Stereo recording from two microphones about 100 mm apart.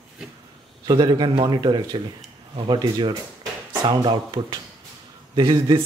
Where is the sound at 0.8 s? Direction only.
50° right (ahead or behind).